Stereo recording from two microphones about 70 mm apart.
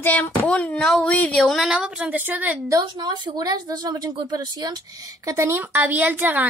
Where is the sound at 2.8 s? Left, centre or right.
Right.